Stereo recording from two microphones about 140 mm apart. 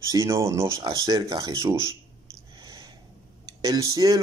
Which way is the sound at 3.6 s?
25° right (ahead or behind).